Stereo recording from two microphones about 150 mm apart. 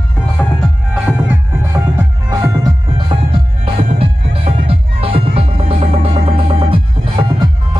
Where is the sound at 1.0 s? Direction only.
15° right (ahead or behind).